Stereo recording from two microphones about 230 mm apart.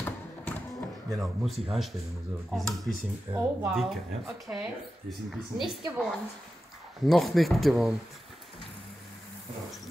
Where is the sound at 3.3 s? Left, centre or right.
Centre.